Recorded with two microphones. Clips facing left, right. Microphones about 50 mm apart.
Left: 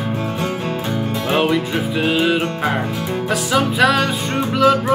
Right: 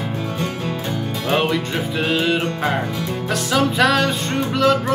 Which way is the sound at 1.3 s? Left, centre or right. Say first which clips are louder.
Left 2 dB; centre.